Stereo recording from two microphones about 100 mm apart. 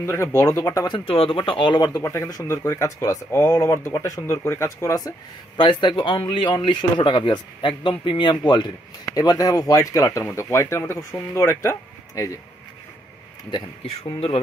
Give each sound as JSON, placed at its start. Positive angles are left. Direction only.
{"t": 0.0, "sound": "speech", "side_deg": 25}
{"t": 0.8, "sound": "speech", "side_deg": 60}
{"t": 2.0, "sound": "speech", "side_deg": 30}
{"t": 5.6, "sound": "a man's voice", "side_deg": 55}